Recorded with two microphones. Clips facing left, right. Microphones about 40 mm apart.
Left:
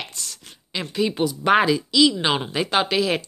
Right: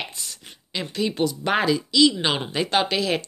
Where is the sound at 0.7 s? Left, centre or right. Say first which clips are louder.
Left 2 dB; centre.